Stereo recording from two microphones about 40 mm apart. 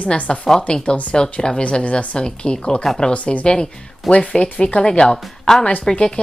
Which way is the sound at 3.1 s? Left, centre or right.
Left.